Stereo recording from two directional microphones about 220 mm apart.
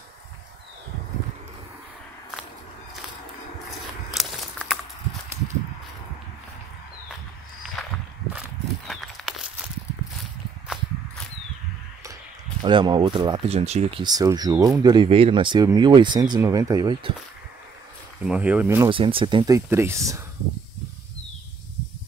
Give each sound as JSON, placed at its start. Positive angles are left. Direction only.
{"t": 4.1, "sound": "a sound", "side_deg": 0}
{"t": 8.8, "sound": "walk", "side_deg": 0}
{"t": 10.7, "sound": "a sound", "side_deg": -5}
{"t": 12.6, "sound": "speech", "side_deg": -20}
{"t": 18.2, "sound": "speech", "side_deg": -5}
{"t": 18.9, "sound": "speech", "side_deg": -25}